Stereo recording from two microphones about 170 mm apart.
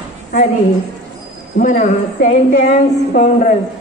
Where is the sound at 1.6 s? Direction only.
50° left (ahead or behind).